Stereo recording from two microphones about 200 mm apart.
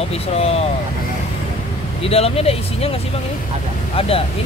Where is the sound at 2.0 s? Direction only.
30° left (ahead or behind).